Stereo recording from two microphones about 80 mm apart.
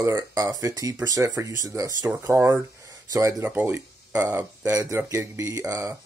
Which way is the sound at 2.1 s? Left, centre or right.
Right.